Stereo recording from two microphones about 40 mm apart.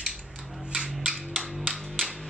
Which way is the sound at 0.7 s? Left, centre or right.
Centre.